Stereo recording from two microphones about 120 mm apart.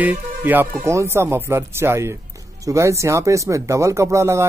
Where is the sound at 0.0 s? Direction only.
15° right (ahead or behind).